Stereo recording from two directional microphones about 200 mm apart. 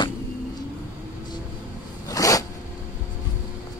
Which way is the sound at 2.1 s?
15° left (ahead or behind).